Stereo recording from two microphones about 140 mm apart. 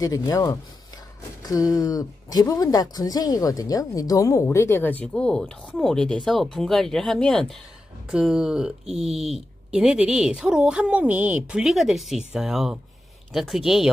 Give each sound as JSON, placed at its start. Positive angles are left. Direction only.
{"t": 0.0, "sound": "speech", "side_deg": 25}
{"t": 8.1, "sound": "speech", "side_deg": -5}